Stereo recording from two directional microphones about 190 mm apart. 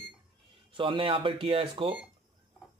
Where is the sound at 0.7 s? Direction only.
25° right (ahead or behind).